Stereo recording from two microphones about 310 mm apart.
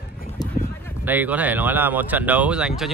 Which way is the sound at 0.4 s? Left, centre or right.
Centre.